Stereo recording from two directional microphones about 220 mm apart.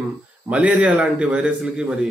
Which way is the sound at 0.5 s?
5° right (ahead or behind).